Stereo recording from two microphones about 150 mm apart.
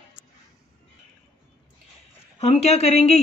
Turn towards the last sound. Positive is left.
turn(degrees=45)  # may be behind; listen again after turning